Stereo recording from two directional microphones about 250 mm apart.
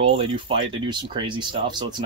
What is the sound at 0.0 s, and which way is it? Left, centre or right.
Speech, right.